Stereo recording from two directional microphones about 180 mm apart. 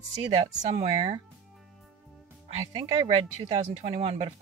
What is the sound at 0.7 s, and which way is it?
Speech, 30° right (ahead or behind).